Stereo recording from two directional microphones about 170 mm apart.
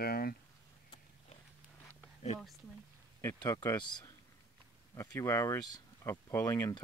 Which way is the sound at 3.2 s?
20° left (ahead or behind).